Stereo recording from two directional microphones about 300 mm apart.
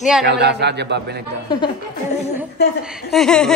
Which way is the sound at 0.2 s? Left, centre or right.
Right.